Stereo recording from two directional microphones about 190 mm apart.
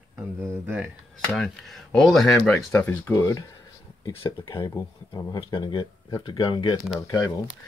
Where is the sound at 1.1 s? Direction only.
Centre (ahead or behind); by 6.8 s 25° left (ahead or behind).